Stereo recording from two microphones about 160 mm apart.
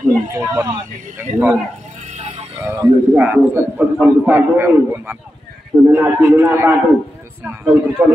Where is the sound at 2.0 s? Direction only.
40° right (ahead or behind).